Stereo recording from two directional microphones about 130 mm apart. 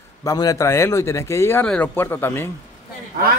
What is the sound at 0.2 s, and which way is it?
Speech, 25° left (ahead or behind).